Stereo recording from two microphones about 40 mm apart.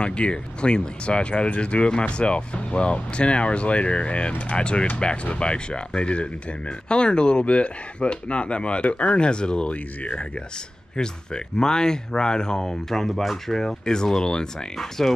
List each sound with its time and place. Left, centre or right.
0.0 s speech: left
11.0 s speech: centre
13.1 s speech: centre
13.5 s speech: centre
14.8 s speech: centre